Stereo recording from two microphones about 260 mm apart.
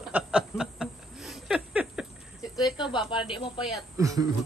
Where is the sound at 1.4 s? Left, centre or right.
Centre.